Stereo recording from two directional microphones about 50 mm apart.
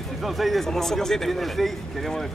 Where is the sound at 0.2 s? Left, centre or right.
Centre.